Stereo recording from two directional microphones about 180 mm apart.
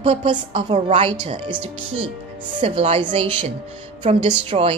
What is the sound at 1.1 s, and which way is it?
Speech, 25° right (ahead or behind).